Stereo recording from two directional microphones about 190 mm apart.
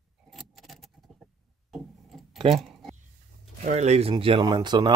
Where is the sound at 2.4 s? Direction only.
Centre (ahead or behind).